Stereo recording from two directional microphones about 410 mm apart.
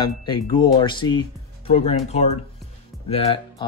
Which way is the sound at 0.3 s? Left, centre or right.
Centre.